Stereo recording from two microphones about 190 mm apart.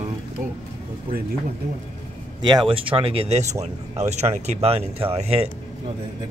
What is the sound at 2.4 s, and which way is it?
Speech, 25° right (ahead or behind).